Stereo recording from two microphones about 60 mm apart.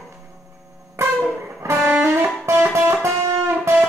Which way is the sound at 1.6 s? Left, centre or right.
Right.